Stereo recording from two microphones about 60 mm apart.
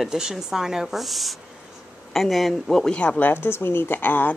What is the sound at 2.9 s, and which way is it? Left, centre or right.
Speech, centre.